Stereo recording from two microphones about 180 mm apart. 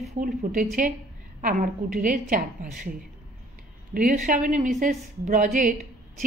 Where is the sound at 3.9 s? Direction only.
45° right (ahead or behind).